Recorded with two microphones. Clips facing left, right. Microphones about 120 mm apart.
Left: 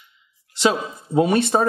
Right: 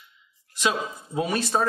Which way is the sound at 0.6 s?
30° left (ahead or behind).